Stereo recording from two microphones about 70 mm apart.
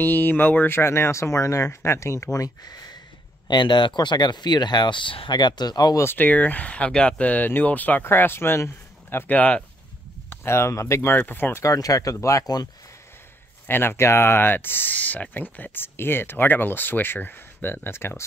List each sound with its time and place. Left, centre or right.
0.0 s speech: left
2.3 s speech: left
3.4 s speech: left
6.1 s speech: left
9.3 s speech: left
10.4 s speech: left
11.1 s speech: left
11.6 s speech: left
13.7 s speech: left